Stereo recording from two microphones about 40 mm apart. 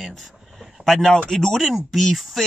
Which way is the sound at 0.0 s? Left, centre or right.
Centre.